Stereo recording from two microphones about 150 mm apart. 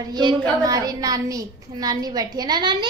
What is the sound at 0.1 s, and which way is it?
A woman's voice, 30° right (ahead or behind).